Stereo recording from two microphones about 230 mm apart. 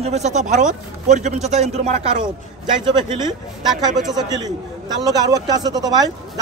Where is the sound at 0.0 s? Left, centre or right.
Right.